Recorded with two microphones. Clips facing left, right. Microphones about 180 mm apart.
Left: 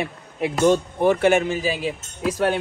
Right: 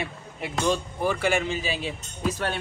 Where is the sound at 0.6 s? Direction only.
20° left (ahead or behind).